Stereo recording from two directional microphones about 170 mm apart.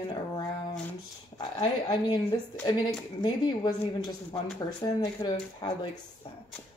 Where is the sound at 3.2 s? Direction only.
25° left (ahead or behind).